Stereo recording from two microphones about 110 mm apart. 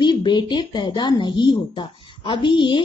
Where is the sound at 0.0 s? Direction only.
45° left (ahead or behind).